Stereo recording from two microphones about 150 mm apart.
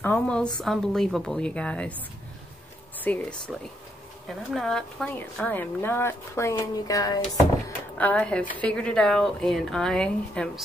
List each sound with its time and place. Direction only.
0.0 s a woman's voice: 10° left (ahead or behind)
3.0 s speech: 10° left (ahead or behind); by 7.2 s 25° left (ahead or behind)
8.0 s a woman's voice: 10° left (ahead or behind)